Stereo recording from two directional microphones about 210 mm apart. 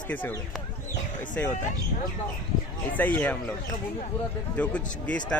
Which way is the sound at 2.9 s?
10° left (ahead or behind).